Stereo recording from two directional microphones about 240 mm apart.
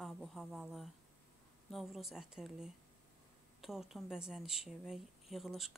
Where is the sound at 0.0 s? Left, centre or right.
Centre.